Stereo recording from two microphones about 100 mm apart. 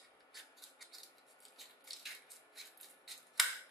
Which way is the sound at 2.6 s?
Centre (ahead or behind).